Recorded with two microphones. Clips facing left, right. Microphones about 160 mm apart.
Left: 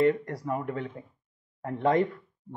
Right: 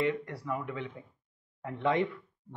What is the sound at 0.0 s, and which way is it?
Speech, 45° left (ahead or behind).